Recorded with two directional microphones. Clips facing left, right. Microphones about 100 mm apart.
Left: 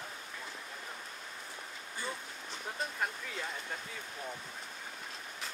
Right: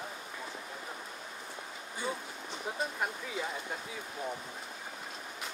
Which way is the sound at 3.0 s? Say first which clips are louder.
Right 2 dB; 10° right (ahead or behind).